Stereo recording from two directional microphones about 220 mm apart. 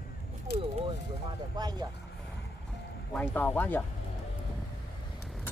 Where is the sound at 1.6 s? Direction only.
20° right (ahead or behind).